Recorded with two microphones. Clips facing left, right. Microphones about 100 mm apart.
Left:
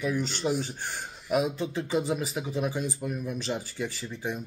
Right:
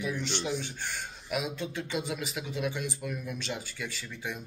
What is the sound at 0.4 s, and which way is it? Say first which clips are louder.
Speech: left 5 dB; 40° left (ahead or behind).